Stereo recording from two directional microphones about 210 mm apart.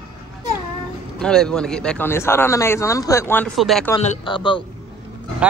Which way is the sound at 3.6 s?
Centre (ahead or behind).